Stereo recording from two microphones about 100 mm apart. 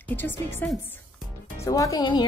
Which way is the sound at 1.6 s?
35° left (ahead or behind).